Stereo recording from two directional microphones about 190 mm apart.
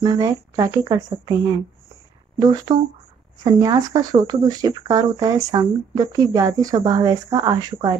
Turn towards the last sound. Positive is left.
turn(degrees=-20)  # may be behind; listen again after turning